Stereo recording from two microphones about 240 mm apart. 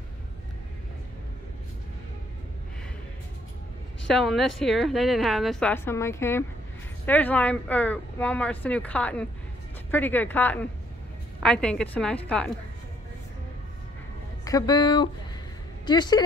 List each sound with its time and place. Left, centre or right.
4.1 s a woman's voice: centre
14.4 s a woman's voice: centre